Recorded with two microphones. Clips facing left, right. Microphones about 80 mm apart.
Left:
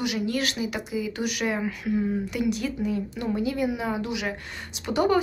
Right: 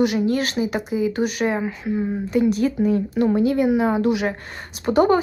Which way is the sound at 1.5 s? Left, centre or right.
Right.